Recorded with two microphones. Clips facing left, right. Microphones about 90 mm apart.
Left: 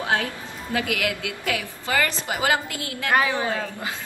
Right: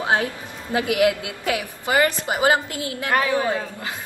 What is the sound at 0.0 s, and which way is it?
A woman's voice, 20° right (ahead or behind).